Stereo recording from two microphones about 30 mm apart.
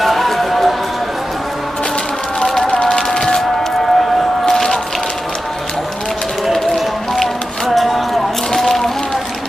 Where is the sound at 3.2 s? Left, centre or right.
Centre.